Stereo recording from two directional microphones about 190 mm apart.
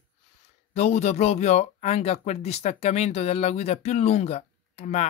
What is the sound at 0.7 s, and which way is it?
Speech, 35° left (ahead or behind).